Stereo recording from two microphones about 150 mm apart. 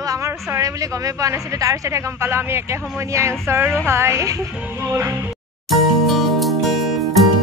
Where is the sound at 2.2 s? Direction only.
15° right (ahead or behind).